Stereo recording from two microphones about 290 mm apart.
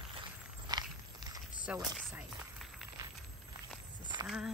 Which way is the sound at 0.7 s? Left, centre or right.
Centre.